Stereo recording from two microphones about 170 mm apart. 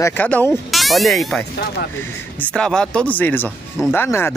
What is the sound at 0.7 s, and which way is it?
Speech, centre (ahead or behind).